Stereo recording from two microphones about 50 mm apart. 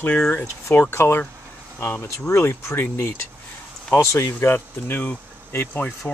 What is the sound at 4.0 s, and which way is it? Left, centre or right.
Speech, left.